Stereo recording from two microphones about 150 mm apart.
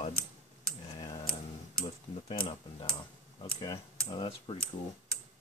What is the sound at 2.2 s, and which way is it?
Speech, 35° left (ahead or behind).